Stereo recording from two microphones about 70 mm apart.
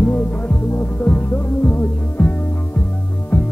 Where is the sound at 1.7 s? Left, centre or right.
Left.